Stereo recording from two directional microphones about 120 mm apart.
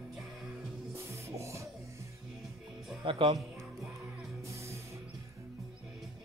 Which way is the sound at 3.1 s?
45° right (ahead or behind).